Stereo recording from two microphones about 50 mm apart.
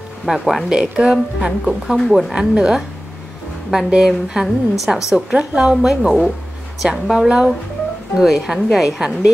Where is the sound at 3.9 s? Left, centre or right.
Centre.